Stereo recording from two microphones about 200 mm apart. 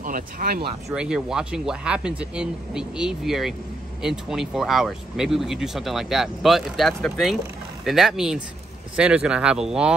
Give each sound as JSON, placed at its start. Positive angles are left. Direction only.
{"t": 0.0, "sound": "speech", "side_deg": -45}
{"t": 0.9, "sound": "speech", "side_deg": -5}